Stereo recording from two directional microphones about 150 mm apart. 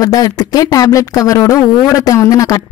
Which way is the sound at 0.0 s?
25° left (ahead or behind).